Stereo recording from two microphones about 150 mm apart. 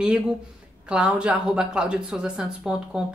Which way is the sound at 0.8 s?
5° right (ahead or behind).